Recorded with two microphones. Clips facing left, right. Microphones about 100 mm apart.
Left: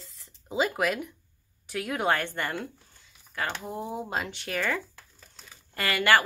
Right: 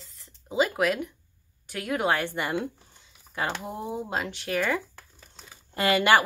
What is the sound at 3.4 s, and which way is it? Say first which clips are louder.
Speech: right 2 dB; 5° right (ahead or behind).